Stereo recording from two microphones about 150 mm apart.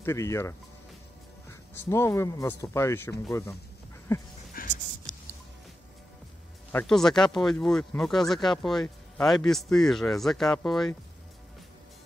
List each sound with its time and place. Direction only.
0.0 s speech: 20° left (ahead or behind)
1.8 s speech: 15° left (ahead or behind)
4.6 s music: 70° left (ahead or behind)
6.9 s speech: 5° left (ahead or behind)